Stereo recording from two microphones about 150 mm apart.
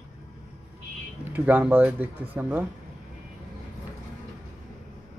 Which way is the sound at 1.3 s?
10° right (ahead or behind).